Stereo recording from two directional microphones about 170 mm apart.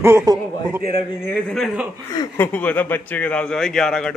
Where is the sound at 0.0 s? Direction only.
20° right (ahead or behind).